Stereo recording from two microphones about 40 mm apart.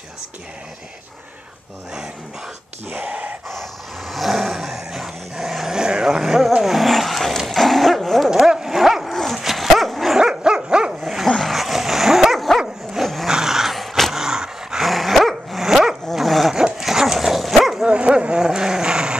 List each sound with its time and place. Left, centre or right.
2.9 s speech: right
4.1 s dog: centre
5.7 s vehicle: right
6.6 s dog: centre
8.4 s dog: centre
9.1 s dog: centre
10.1 s dog: centre
11.2 s a sound: centre
11.5 s dog: centre
13.3 s dog: centre
14.1 s dog: centre
14.8 s dog: centre
15.6 s dog: centre
17.8 s a sound: right